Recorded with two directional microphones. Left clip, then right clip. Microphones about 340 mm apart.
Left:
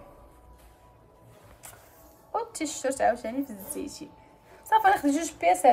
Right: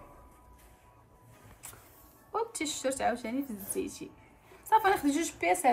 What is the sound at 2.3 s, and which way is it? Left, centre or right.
Speech, centre.